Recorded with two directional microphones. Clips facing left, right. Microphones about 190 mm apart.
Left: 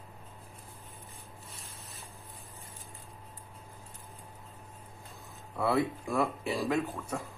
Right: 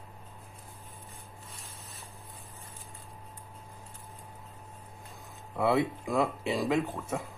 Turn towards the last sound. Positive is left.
turn(degrees=-20)  # may be behind; listen again after turning